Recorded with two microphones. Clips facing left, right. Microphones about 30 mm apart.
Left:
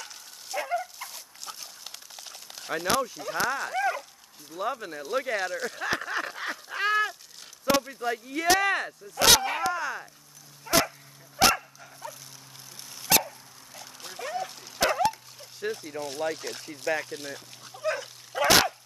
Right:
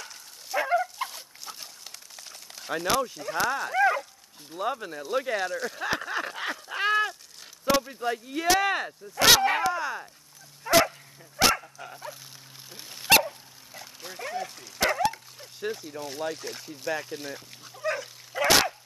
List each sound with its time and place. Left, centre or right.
0.0 s dog: centre
1.0 s dog: right
1.9 s a sound: centre
4.6 s speech: centre
4.8 s speech: centre
6.5 s goose: centre
8.0 s speech: centre
9.7 s a sound: centre
10.7 s dog: centre
11.3 s dog: centre
12.9 s dog: right
14.0 s dog: centre
15.3 s a sound: centre